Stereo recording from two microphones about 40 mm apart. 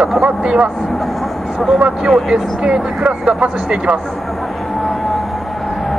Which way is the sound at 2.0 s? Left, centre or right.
Centre.